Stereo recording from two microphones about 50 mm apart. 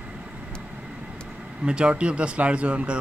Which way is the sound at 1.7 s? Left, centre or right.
Centre.